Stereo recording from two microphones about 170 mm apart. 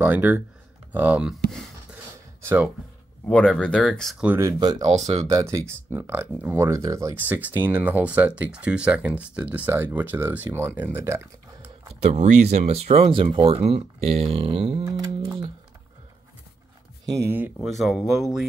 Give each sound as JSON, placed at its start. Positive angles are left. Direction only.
{"t": 0.0, "sound": "speech", "side_deg": -10}
{"t": 1.5, "sound": "a sound", "side_deg": 0}
{"t": 2.4, "sound": "speech", "side_deg": -10}
{"t": 3.3, "sound": "speech", "side_deg": 5}
{"t": 4.4, "sound": "speech", "side_deg": -20}
{"t": 4.8, "sound": "speech", "side_deg": -40}
{"t": 5.2, "sound": "speech", "side_deg": -20}
{"t": 11.9, "sound": "speech", "side_deg": -40}
{"t": 17.1, "sound": "speech", "side_deg": -15}
{"t": 17.6, "sound": "speech", "side_deg": 0}